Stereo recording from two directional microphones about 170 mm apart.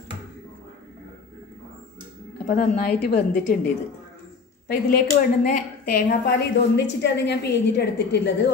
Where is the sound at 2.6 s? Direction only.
60° left (ahead or behind).